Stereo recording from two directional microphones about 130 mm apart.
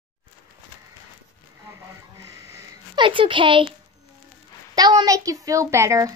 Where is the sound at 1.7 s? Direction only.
25° right (ahead or behind).